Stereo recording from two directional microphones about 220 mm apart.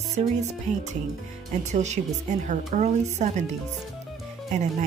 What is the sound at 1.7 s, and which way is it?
Speech, 30° right (ahead or behind).